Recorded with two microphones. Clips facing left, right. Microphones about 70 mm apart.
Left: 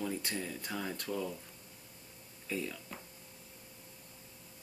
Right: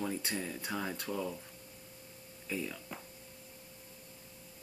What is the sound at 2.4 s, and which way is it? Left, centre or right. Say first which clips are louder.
Speech: even; centre.